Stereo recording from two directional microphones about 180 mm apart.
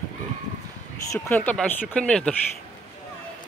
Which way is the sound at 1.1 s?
10° left (ahead or behind).